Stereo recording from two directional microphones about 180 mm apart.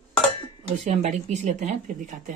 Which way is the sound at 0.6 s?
40° right (ahead or behind).